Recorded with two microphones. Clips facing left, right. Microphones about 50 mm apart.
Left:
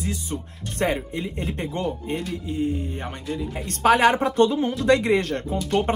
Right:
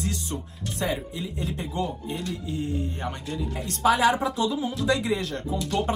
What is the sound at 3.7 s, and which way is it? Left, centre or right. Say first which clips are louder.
Speech: left 3 dB; left.